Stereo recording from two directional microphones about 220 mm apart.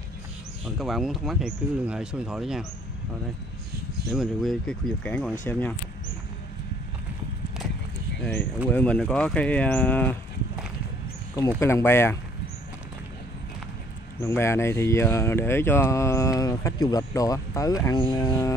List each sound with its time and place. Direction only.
0.7 s speech: centre (ahead or behind)
4.1 s speech: centre (ahead or behind)
8.2 s speech: 5° left (ahead or behind)
11.6 s speech: 10° left (ahead or behind)
14.2 s speech: 10° left (ahead or behind)